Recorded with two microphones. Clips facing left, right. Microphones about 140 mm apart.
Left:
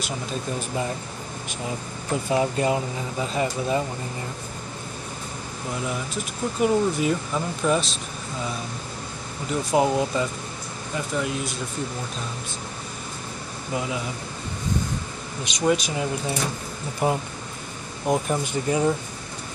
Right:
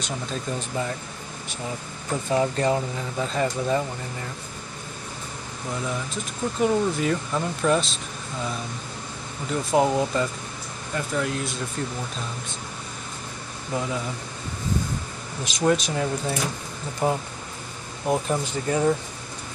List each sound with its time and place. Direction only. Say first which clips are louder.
0.0 s speech: left 1 dB; 10° left (ahead or behind)
2.2 s speech: even; 10° left (ahead or behind)
6.6 s speech: left 1 dB; 5° left (ahead or behind)
9.7 s speech: even; centre (ahead or behind)
13.7 s speech: even; 10° left (ahead or behind)
15.4 s speech: even; centre (ahead or behind)